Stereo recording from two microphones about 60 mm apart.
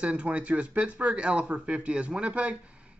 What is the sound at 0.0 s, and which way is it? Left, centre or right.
Speech, right.